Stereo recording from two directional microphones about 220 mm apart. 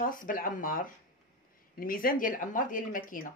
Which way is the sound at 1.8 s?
40° left (ahead or behind).